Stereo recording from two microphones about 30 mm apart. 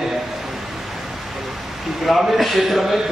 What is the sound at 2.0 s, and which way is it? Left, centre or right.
Speech, centre.